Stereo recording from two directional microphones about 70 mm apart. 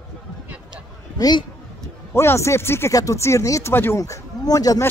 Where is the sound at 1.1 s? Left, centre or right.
Left.